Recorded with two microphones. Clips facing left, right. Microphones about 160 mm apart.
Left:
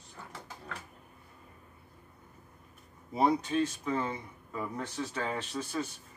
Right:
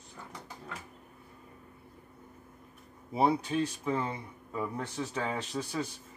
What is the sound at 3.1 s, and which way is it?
Speech, 10° right (ahead or behind).